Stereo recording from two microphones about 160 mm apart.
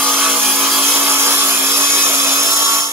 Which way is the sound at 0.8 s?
15° right (ahead or behind).